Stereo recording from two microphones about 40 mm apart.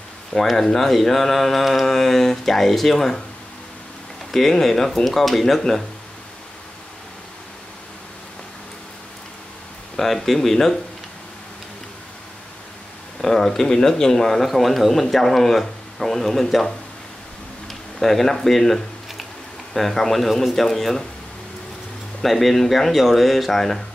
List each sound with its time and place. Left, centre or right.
0.3 s speech: centre
0.7 s speech: centre
4.3 s speech: centre
9.9 s speech: centre
13.2 s speech: centre
17.6 s a sound: centre
19.7 s speech: centre
22.2 s speech: centre